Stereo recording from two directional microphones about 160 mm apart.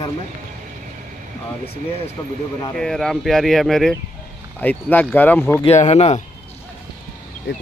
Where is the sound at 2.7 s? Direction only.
5° left (ahead or behind).